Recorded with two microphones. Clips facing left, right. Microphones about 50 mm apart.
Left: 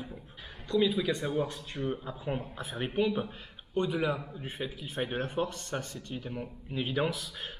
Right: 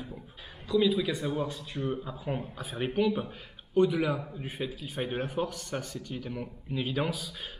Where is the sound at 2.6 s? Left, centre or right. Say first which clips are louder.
Right 2 dB; centre.